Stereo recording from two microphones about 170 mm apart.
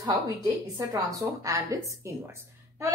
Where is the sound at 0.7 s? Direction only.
20° right (ahead or behind).